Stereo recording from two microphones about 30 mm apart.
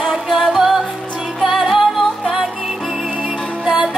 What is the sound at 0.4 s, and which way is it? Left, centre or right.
Music, centre.